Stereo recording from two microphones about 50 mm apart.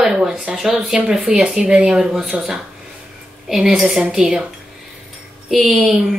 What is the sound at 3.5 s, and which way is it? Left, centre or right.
Speech, centre.